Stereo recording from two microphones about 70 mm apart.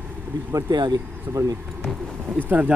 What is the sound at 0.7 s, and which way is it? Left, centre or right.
Speech, right.